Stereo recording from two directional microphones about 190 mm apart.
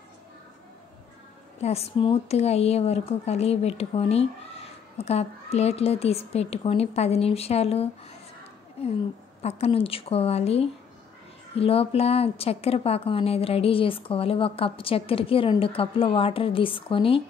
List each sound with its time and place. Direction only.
1.6 s speech: 35° left (ahead or behind)